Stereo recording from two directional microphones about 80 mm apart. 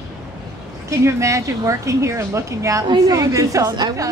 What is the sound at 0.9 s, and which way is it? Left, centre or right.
A woman's voice, right.